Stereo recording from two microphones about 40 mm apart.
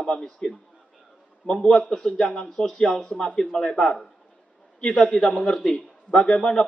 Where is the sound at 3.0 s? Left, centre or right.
Left.